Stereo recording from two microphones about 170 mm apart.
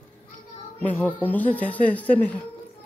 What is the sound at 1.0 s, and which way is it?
Speech, 10° left (ahead or behind).